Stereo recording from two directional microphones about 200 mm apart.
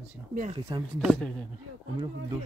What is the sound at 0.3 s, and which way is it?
Speech, 40° right (ahead or behind).